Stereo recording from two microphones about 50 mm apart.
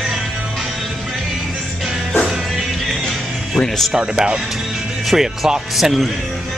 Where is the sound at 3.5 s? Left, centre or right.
Centre.